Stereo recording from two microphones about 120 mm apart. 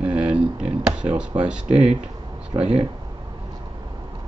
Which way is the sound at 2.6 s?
55° right (ahead or behind).